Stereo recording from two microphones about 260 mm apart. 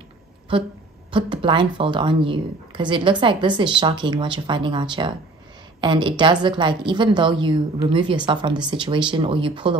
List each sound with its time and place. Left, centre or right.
1.1 s a woman's voice: centre